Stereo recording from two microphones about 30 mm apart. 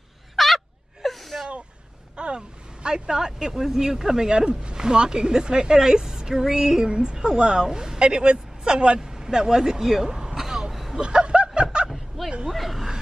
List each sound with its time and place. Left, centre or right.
0.4 s a sound: centre
1.0 s gasp: centre
2.1 s a sound: right
3.6 s speech: centre
4.3 s speech: right
10.3 s throat clearing: centre
10.7 s chuckle: centre
11.0 s snicker: right
12.2 s a sound: centre